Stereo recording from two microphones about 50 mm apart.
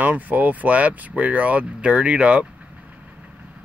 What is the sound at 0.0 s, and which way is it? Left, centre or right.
Speech, right.